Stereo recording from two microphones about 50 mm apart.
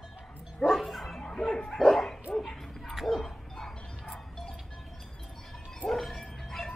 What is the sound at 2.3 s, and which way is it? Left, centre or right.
Bow-wow, centre.